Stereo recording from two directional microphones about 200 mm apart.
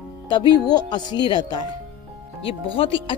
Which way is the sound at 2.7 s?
25° left (ahead or behind).